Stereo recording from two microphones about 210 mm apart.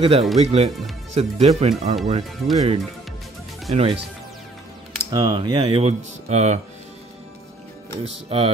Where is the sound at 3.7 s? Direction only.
30° right (ahead or behind).